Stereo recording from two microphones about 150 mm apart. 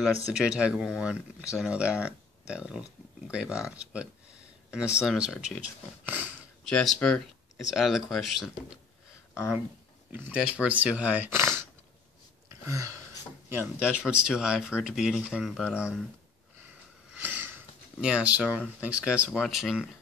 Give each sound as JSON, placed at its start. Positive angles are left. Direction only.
{"t": 0.3, "sound": "speech", "side_deg": -5}
{"t": 6.6, "sound": "speech", "side_deg": 5}
{"t": 10.1, "sound": "speech", "side_deg": -10}
{"t": 12.6, "sound": "a sound", "side_deg": -20}
{"t": 13.5, "sound": "speech", "side_deg": -10}
{"t": 17.1, "sound": "a sound", "side_deg": -10}
{"t": 18.8, "sound": "speech", "side_deg": -10}